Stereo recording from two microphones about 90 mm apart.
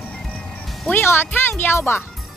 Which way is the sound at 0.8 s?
25° left (ahead or behind).